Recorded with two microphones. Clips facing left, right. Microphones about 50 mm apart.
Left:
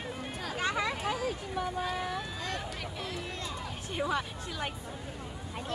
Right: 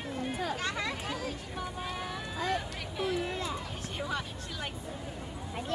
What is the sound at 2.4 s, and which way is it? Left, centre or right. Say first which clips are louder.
Speech: right 4 dB; centre.